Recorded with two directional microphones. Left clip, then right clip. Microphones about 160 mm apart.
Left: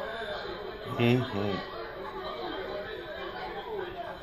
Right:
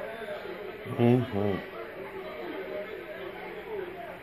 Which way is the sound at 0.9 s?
50° right (ahead or behind).